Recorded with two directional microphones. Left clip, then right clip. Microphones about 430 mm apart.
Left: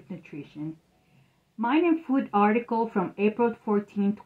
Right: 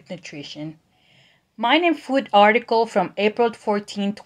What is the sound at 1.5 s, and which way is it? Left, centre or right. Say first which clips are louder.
Speech: right 6 dB; right.